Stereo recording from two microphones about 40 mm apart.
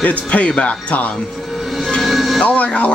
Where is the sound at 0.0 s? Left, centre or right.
Left.